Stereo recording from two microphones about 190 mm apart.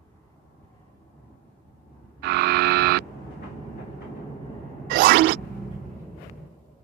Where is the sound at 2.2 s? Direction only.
55° right (ahead or behind).